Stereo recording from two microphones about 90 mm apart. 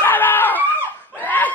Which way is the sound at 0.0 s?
20° left (ahead or behind).